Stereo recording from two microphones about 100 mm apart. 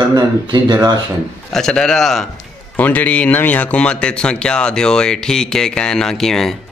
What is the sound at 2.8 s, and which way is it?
A man's voice, 15° left (ahead or behind).